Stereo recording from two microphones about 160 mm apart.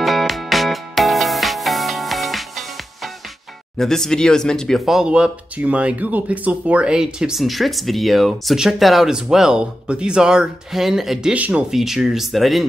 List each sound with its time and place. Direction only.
0.0 s music: centre (ahead or behind)
3.7 s speech: centre (ahead or behind)